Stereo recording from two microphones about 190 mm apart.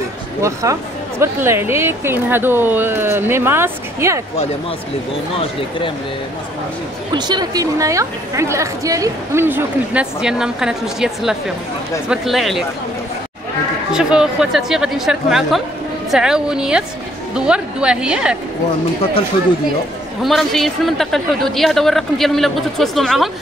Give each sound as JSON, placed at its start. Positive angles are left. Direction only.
{"t": 0.4, "sound": "speech", "side_deg": -15}
{"t": 7.1, "sound": "a woman's voice", "side_deg": -20}
{"t": 13.9, "sound": "a woman's voice", "side_deg": -5}
{"t": 20.2, "sound": "a woman's voice", "side_deg": 0}